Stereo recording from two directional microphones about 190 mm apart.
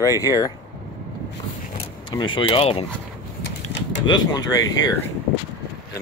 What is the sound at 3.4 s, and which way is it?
Typewriter, 70° left (ahead or behind).